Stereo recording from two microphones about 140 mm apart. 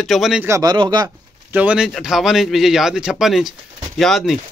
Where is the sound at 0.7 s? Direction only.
35° right (ahead or behind).